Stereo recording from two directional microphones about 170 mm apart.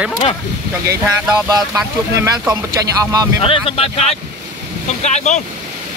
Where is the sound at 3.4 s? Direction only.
35° left (ahead or behind).